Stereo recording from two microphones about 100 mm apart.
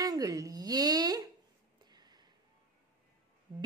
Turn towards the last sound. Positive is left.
turn(degrees=-50)  # may be behind; listen again after turning